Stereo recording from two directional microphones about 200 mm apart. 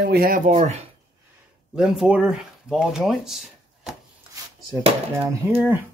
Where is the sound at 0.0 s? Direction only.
50° right (ahead or behind).